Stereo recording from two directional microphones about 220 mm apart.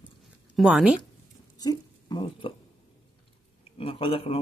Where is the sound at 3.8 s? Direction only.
25° left (ahead or behind).